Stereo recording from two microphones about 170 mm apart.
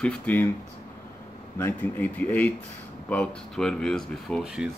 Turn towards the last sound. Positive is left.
turn(degrees=-5)  # may be behind; listen again after turning